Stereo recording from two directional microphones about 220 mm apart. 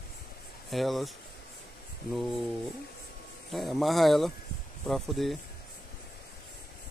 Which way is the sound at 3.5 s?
Centre (ahead or behind).